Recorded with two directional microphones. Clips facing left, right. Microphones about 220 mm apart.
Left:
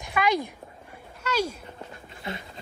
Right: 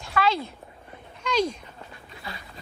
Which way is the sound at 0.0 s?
15° left (ahead or behind).